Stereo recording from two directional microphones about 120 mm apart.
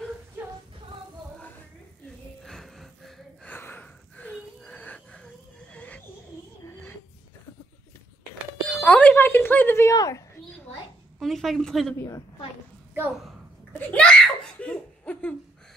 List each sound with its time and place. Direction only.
2.0 s music: 5° left (ahead or behind)
3.4 s wheeze: 15° left (ahead or behind)
6.6 s a sound: 20° left (ahead or behind)
8.6 s speech: 10° left (ahead or behind)
11.1 s a woman's voice: centre (ahead or behind)
13.7 s laughter: 10° left (ahead or behind)